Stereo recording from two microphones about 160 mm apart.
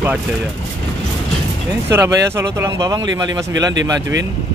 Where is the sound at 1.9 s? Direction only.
15° right (ahead or behind).